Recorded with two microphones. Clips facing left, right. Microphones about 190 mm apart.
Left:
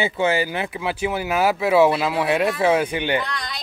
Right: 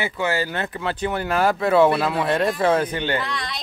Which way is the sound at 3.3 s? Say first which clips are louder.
Right 1 dB; centre (ahead or behind).